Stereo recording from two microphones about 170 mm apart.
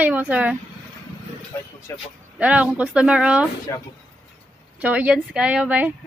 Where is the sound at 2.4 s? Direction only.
10° right (ahead or behind).